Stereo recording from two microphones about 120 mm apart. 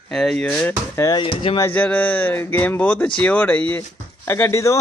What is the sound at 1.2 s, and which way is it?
Speech, 50° left (ahead or behind).